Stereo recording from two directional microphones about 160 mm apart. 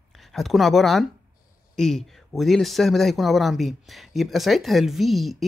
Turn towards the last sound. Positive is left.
turn(degrees=0)  # may be behind; listen again after turning